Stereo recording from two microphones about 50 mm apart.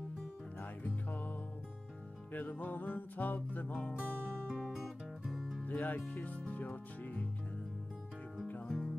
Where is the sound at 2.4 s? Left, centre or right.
Left.